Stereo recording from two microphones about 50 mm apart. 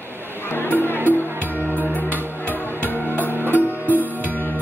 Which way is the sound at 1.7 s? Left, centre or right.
Right.